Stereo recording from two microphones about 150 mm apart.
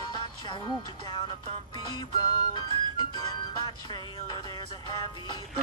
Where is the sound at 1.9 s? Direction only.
30° left (ahead or behind).